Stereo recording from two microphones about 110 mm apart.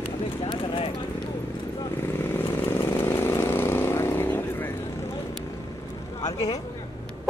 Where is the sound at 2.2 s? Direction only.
20° left (ahead or behind).